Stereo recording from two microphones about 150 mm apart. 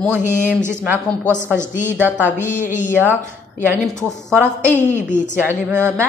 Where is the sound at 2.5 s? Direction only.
55° left (ahead or behind).